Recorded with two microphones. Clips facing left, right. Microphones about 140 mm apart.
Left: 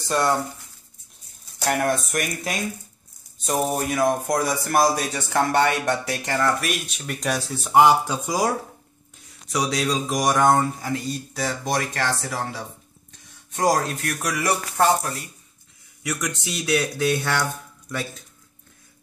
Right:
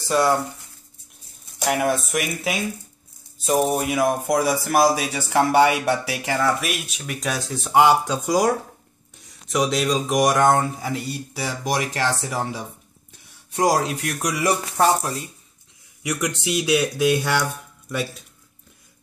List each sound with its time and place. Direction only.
0.1 s speech: 5° right (ahead or behind)
1.7 s speech: 5° right (ahead or behind)
3.3 s a sound: 30° right (ahead or behind)
3.7 s speech: 5° right (ahead or behind)
9.5 s speech: centre (ahead or behind)